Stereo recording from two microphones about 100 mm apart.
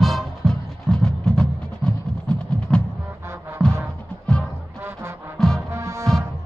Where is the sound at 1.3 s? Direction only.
5° left (ahead or behind).